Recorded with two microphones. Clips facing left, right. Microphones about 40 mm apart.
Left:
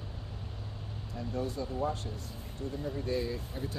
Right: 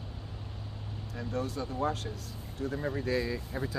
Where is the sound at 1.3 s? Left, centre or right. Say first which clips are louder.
Right 1 dB; right.